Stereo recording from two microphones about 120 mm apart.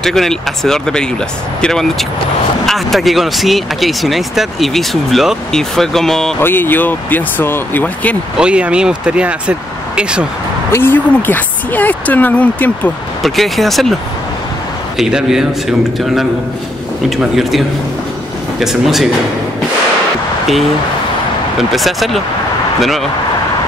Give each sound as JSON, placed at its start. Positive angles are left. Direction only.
{"t": 0.0, "sound": "speech", "side_deg": 5}
{"t": 6.4, "sound": "a woman's voice", "side_deg": 15}
{"t": 8.4, "sound": "speech", "side_deg": -10}
{"t": 10.7, "sound": "a woman's voice", "side_deg": 20}
{"t": 13.2, "sound": "speech", "side_deg": 0}
{"t": 15.0, "sound": "speech", "side_deg": -5}
{"t": 21.5, "sound": "speech", "side_deg": 0}